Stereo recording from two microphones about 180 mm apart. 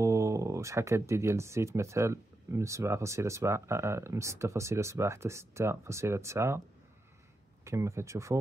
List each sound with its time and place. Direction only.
0.0 s speech: 15° right (ahead or behind)
7.6 s speech: 15° right (ahead or behind)